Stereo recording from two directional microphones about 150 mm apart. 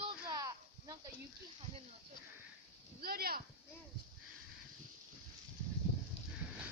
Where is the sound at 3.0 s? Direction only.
90° right.